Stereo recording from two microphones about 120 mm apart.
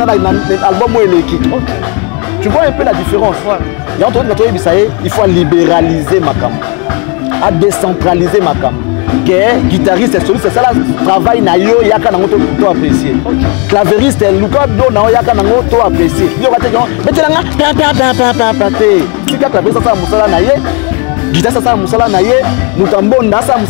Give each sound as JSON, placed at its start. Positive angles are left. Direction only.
{"t": 0.0, "sound": "music", "side_deg": 0}
{"t": 7.8, "sound": "music", "side_deg": 0}
{"t": 22.9, "sound": "speech", "side_deg": 25}